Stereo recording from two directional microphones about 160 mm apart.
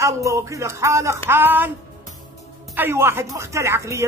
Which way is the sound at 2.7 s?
15° right (ahead or behind).